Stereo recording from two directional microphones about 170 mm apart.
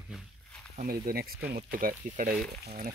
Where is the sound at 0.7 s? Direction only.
55° right (ahead or behind).